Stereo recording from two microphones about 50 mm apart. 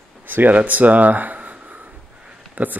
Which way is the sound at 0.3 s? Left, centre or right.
Right.